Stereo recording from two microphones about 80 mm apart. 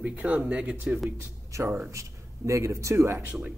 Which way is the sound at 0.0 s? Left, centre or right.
Centre.